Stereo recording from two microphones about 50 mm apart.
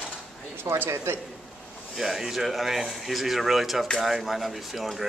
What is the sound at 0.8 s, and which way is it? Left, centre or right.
Speech, right.